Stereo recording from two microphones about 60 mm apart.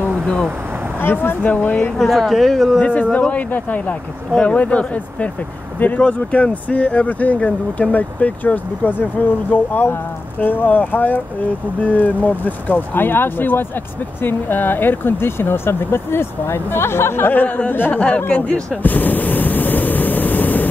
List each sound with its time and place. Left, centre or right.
0.0 s vehicle: centre
1.0 s speech: left
2.0 s speech: centre
2.8 s speech: left
18.8 s a sound: left